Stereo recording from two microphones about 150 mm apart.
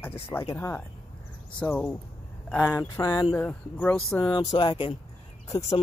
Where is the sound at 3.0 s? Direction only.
30° left (ahead or behind).